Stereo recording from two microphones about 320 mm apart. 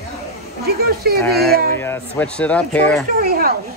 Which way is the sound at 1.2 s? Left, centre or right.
Centre.